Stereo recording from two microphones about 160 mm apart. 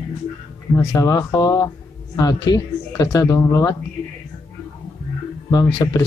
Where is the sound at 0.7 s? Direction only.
20° left (ahead or behind).